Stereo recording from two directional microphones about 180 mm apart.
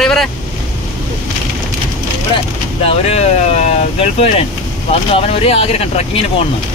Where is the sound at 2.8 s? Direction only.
35° left (ahead or behind).